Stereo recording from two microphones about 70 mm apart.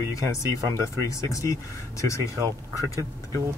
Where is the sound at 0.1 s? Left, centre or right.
Left.